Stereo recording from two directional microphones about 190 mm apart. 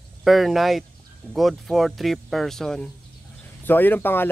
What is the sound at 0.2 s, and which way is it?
Speech, centre (ahead or behind).